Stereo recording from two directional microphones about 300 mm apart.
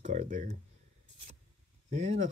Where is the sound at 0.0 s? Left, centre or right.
Right.